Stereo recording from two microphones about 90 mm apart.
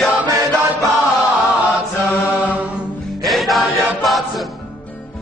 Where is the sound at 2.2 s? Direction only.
15° right (ahead or behind).